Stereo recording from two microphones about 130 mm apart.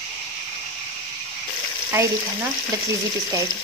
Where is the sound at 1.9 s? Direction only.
20° right (ahead or behind).